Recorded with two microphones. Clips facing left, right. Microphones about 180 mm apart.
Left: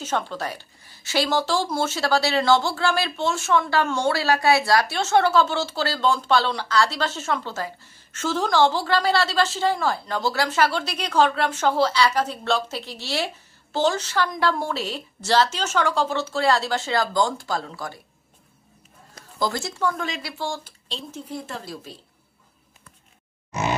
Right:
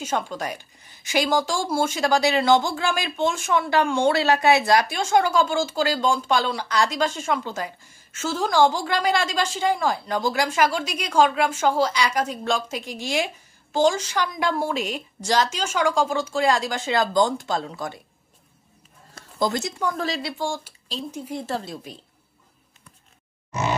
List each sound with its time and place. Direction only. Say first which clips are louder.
0.0 s speech: even; 10° right (ahead or behind)
19.3 s speech: right 2 dB; 20° right (ahead or behind)
20.0 s speech: right 3 dB; 30° right (ahead or behind)
20.4 s speech: right 2 dB; 10° right (ahead or behind)
21.4 s speech: right 7 dB; 25° right (ahead or behind)